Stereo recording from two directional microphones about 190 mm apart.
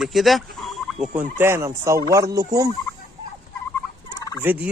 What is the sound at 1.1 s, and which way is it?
Fowl, 10° right (ahead or behind).